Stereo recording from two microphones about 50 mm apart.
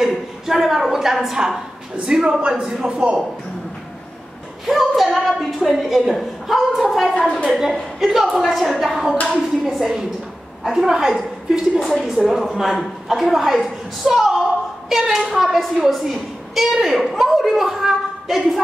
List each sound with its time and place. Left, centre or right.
0.0 s a woman's voice: centre
4.6 s a woman's voice: centre
7.2 s a woman's voice: left
7.4 s a woman's voice: centre